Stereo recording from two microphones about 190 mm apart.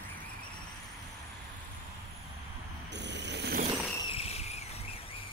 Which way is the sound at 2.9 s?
65° right (ahead or behind).